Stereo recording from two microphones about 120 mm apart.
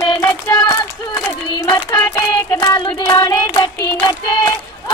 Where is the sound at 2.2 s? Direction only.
35° left (ahead or behind).